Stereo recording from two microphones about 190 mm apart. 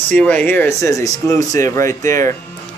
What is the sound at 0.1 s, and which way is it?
Speech, 5° left (ahead or behind).